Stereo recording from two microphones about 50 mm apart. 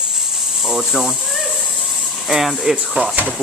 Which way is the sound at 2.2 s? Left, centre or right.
Centre.